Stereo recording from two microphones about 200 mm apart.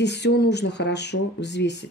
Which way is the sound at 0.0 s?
60° left (ahead or behind).